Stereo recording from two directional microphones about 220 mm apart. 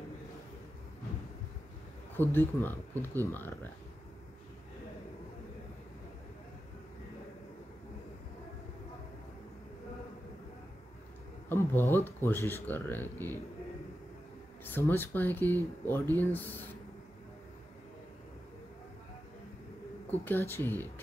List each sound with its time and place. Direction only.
2.1 s speech: 10° left (ahead or behind)
11.4 s speech: 10° left (ahead or behind)
14.6 s speech: 10° left (ahead or behind)
20.1 s speech: 10° left (ahead or behind)